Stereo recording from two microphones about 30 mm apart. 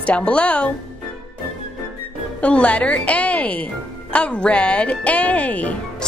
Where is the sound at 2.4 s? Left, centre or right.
Left.